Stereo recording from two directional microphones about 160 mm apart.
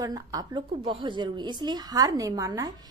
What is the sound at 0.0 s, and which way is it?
A woman's voice, 25° right (ahead or behind).